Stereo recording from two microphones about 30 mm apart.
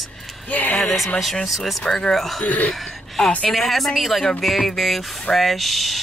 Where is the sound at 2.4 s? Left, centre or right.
Left.